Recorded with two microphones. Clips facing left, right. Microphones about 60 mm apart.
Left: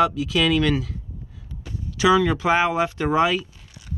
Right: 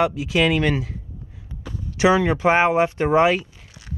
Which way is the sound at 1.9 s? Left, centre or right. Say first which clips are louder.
Even; right.